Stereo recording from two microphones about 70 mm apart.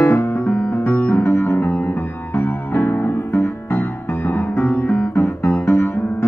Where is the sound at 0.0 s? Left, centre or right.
Left.